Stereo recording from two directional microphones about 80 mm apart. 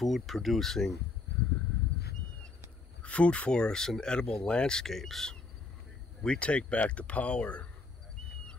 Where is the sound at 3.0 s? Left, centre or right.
Centre.